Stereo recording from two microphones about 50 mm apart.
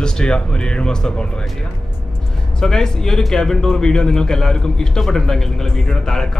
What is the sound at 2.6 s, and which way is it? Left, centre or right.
Speech, centre.